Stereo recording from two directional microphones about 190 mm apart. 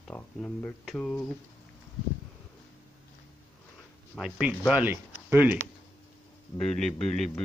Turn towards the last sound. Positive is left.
turn(degrees=0)  # may be behind; listen again after turning